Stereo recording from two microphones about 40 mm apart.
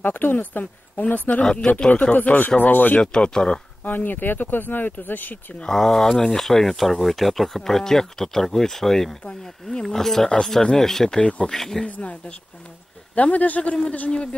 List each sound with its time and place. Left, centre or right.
0.0 s speech: left
1.4 s speech: centre
2.2 s speech: left
3.0 s speech: left
3.8 s speech: left
5.7 s speech: centre
11.1 s speech: left
11.4 s speech: centre
11.8 s speech: left